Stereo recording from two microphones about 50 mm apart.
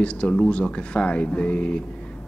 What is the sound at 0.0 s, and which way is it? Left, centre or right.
Speech, left.